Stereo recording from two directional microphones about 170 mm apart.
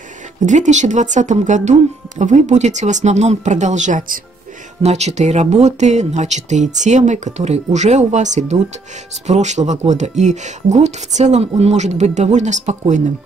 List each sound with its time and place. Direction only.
0.4 s speech: 45° right (ahead or behind)